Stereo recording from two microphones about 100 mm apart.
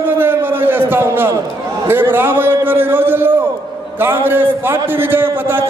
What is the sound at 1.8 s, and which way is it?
A man's voice, 20° right (ahead or behind).